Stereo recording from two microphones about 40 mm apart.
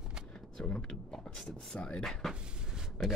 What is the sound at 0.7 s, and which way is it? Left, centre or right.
Speech, left.